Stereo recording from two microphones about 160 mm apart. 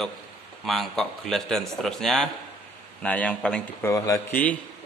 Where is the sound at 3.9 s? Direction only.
20° left (ahead or behind).